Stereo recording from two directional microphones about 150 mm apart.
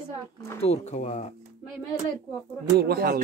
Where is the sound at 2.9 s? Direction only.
90° right.